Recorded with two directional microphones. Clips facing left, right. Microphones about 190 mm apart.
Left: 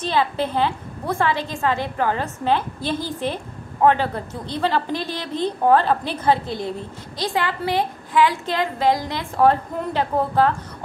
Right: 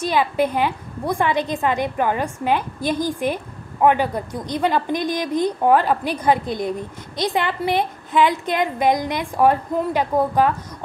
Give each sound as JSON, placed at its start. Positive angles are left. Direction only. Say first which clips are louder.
{"t": 0.0, "sound": "a woman's voice", "louder": "right 2 dB", "side_deg": -15}